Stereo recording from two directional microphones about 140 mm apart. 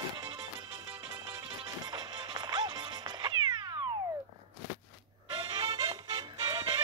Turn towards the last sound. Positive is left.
turn(degrees=-30)  # may be behind; listen again after turning